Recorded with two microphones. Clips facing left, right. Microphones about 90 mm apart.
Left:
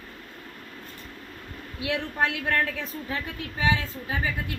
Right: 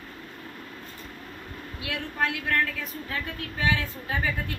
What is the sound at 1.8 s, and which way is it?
A woman's voice, 25° left (ahead or behind).